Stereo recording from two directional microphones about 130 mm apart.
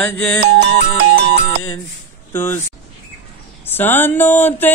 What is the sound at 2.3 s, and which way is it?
Speech, 20° left (ahead or behind).